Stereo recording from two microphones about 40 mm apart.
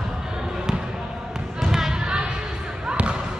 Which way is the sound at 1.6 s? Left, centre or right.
Centre.